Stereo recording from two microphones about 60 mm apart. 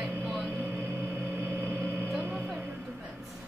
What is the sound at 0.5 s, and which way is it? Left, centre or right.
Music, right.